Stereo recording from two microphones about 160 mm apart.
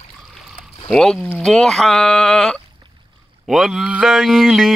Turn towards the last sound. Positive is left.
turn(degrees=0)  # may be behind; listen again after turning